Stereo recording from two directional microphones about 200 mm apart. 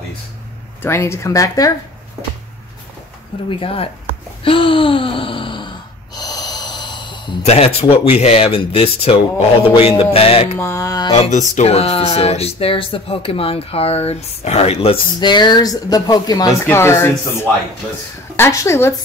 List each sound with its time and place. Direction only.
0.8 s speech: 15° left (ahead or behind)
3.4 s speech: 25° left (ahead or behind)
10.6 s speech: 15° left (ahead or behind)
11.1 s speech: 30° left (ahead or behind); by 18.9 s 15° left (ahead or behind)